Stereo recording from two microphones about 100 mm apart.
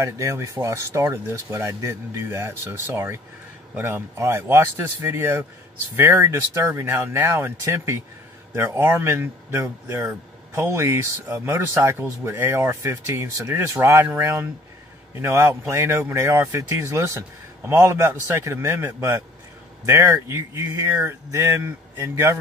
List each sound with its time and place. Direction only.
0.0 s speech: 30° right (ahead or behind)